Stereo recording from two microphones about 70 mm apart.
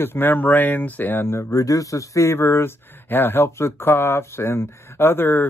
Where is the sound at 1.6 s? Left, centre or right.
Left.